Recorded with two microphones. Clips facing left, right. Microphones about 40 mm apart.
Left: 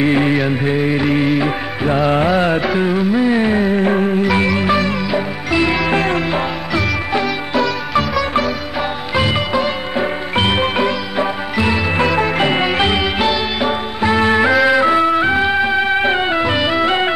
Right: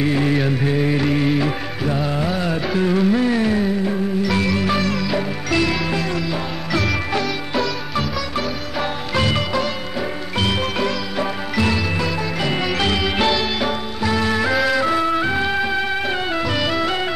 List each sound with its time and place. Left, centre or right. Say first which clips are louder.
0.0 s music: left 4 dB; left
1.9 s music: left 8 dB; left
2.6 s music: left 2 dB; centre
3.3 s music: left 4 dB; left
3.7 s music: left 6 dB; left
4.3 s music: left 4 dB; left
5.9 s music: left 6 dB; left
6.7 s music: left 1 dB; centre
7.5 s music: left 7 dB; centre
12.0 s music: left 7 dB; left
13.2 s music: left 2 dB; centre
13.7 s music: left 5 dB; left